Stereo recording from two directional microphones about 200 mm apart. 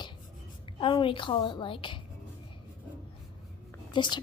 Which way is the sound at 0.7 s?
25° left (ahead or behind).